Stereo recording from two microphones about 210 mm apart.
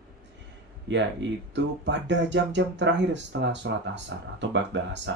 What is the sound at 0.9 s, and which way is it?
Speech, 60° right (ahead or behind).